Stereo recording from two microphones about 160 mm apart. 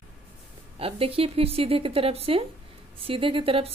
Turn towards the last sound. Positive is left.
turn(degrees=-35)  # may be behind; listen again after turning